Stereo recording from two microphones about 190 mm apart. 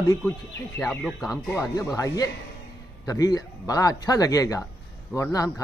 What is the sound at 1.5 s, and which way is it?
Speech, 15° left (ahead or behind).